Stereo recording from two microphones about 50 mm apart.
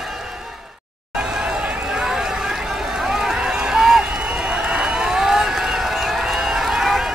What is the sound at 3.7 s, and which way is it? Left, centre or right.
Run, centre.